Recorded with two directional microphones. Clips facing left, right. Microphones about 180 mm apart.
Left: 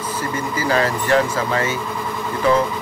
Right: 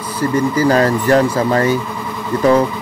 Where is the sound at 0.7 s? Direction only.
40° right (ahead or behind).